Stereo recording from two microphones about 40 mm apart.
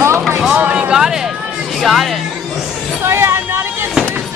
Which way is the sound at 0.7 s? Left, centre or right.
Right.